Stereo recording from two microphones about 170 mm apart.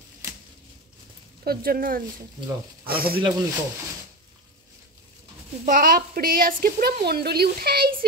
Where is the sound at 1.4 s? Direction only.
60° right (ahead or behind).